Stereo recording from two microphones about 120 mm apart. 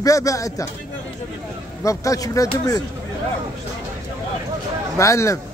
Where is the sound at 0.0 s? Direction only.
30° left (ahead or behind).